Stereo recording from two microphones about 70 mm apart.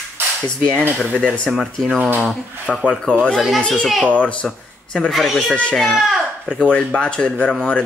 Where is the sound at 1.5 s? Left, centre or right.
Centre.